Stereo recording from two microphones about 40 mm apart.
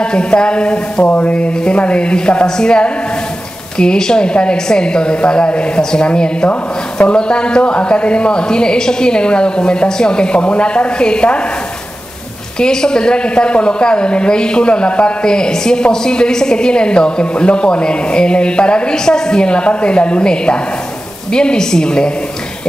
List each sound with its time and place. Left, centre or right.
0.0 s a woman's voice: left
1.0 s a sound: left
1.8 s a woman's voice: left
12.5 s a woman's voice: centre